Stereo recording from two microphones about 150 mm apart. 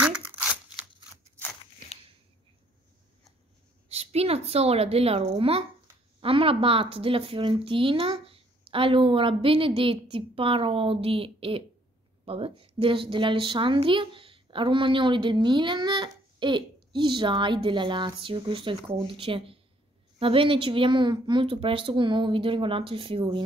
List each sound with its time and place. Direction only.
0.0 s crumpling: 10° right (ahead or behind)
3.9 s a woman's voice: 45° right (ahead or behind)